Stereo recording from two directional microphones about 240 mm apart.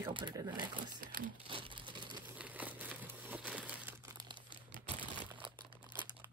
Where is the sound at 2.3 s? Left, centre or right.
Centre.